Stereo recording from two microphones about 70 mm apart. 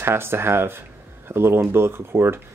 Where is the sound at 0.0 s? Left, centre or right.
Right.